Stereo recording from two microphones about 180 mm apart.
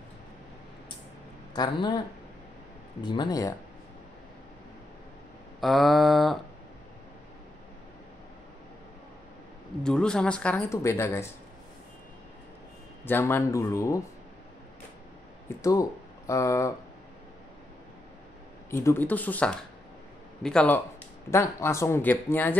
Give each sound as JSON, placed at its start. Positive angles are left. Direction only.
{"t": 1.5, "sound": "speech", "side_deg": 25}
{"t": 3.0, "sound": "speech", "side_deg": 25}
{"t": 5.6, "sound": "mantra", "side_deg": 0}
{"t": 9.8, "sound": "speech", "side_deg": 5}
{"t": 13.0, "sound": "speech", "side_deg": 10}
{"t": 15.6, "sound": "speech", "side_deg": 20}
{"t": 18.7, "sound": "speech", "side_deg": 15}